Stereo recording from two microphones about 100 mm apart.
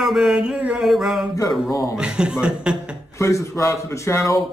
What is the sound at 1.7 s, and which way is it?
Speech, 35° left (ahead or behind).